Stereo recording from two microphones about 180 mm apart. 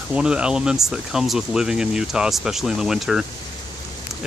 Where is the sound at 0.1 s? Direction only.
5° right (ahead or behind).